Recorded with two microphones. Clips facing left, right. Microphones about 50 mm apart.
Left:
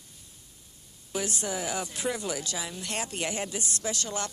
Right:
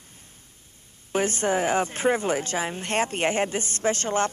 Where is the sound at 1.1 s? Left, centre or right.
Right.